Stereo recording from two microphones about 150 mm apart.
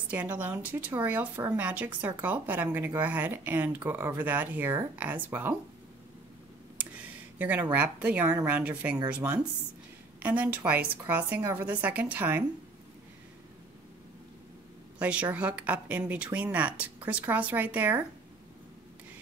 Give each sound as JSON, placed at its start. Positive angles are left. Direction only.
{"t": 0.1, "sound": "speech", "side_deg": -10}
{"t": 6.8, "sound": "a sound", "side_deg": -10}
{"t": 7.7, "sound": "speech", "side_deg": -10}
{"t": 10.2, "sound": "speech", "side_deg": -10}
{"t": 15.0, "sound": "speech", "side_deg": -10}